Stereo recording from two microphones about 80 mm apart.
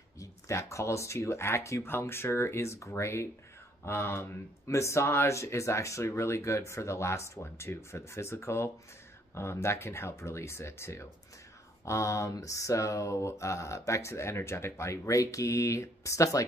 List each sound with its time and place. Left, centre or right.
0.2 s speech: left